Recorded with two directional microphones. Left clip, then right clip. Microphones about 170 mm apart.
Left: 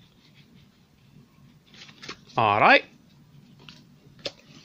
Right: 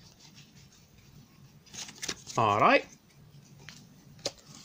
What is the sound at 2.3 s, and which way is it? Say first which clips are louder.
Speech: left 5 dB; 15° left (ahead or behind).